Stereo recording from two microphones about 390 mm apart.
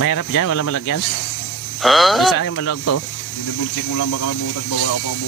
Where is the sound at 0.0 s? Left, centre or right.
Left.